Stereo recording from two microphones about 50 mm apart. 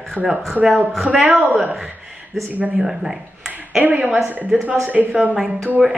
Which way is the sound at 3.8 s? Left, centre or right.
Right.